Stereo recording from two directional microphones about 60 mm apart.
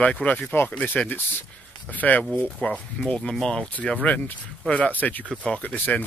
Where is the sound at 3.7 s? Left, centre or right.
Left.